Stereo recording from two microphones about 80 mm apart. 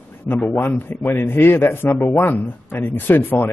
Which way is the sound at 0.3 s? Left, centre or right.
Left.